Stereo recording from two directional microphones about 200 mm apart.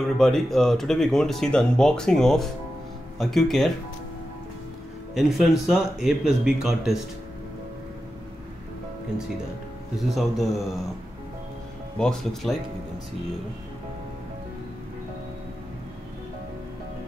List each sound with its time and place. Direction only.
0.0 s speech: centre (ahead or behind)
5.1 s speech: centre (ahead or behind)
10.1 s speech: centre (ahead or behind)
12.0 s speech: 5° left (ahead or behind)